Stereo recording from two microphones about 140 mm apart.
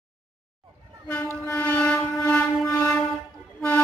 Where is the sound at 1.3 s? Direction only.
15° left (ahead or behind).